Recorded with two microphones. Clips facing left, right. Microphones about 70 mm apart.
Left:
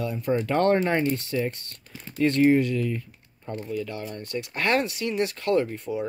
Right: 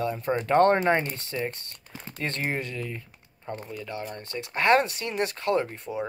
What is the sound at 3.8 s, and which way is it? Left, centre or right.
Speech, right.